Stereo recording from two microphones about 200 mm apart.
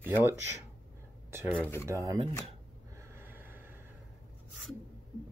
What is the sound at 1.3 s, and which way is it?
Speech, 10° right (ahead or behind).